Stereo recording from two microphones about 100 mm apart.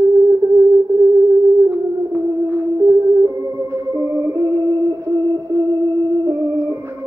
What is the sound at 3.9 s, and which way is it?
Music, 35° right (ahead or behind).